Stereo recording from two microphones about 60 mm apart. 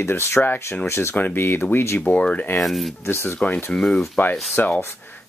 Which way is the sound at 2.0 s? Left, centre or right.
Left.